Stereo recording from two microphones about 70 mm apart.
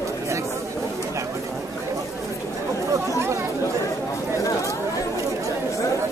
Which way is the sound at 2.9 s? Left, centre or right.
Right.